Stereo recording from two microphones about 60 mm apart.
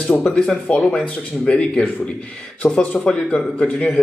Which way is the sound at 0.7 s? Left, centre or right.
Centre.